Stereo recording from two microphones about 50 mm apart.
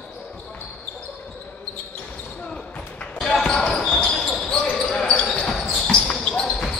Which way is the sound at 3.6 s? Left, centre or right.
Centre.